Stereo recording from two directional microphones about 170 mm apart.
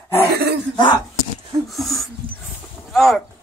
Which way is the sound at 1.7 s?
Centre (ahead or behind).